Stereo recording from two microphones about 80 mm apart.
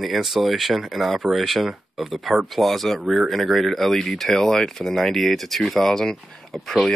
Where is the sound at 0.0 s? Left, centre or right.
Centre.